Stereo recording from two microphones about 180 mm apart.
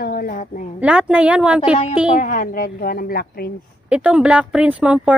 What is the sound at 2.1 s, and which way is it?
A woman's voice, 45° left (ahead or behind).